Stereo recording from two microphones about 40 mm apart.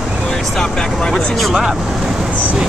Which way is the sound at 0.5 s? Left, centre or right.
Centre.